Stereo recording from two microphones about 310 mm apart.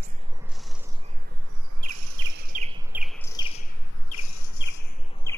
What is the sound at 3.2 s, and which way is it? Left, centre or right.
Bird, centre.